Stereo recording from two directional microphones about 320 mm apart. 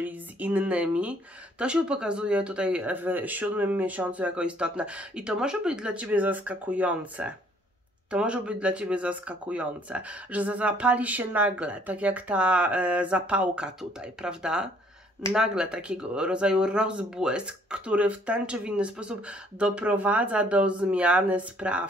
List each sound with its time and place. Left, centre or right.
0.0 s speech: centre